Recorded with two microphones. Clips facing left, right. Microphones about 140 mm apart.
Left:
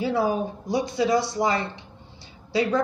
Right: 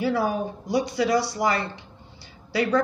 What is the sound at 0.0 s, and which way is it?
A woman's voice, 25° left (ahead or behind).